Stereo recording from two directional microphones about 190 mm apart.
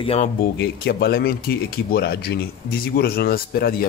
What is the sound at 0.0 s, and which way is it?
Speech, 30° left (ahead or behind).